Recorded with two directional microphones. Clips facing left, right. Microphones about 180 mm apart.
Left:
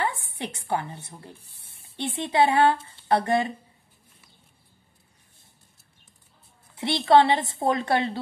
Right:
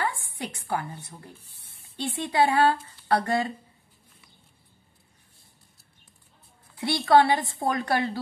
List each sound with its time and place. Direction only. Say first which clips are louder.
0.0 s a woman's voice: left 2 dB; 25° left (ahead or behind)
6.7 s speech: left 1 dB; 25° left (ahead or behind)